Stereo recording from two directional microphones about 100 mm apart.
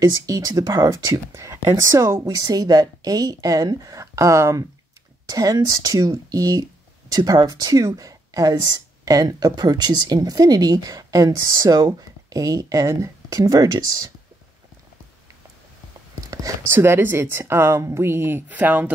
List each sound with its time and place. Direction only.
0.0 s speech: 40° right (ahead or behind)
16.7 s speech: 25° right (ahead or behind)